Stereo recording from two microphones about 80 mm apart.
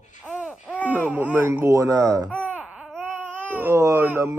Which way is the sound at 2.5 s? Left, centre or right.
Centre.